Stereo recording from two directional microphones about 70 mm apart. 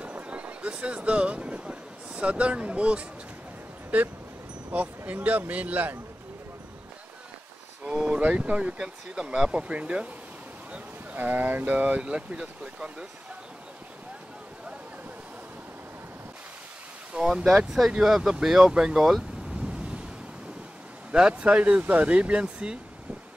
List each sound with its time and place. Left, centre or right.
0.0 s vehicle: centre
3.9 s speech: centre
7.8 s speech: centre
17.1 s speech: centre
21.1 s speech: centre